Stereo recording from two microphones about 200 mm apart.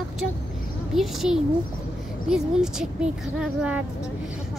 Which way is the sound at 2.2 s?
5° right (ahead or behind).